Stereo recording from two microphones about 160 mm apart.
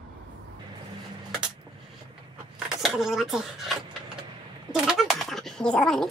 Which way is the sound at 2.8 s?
Centre (ahead or behind).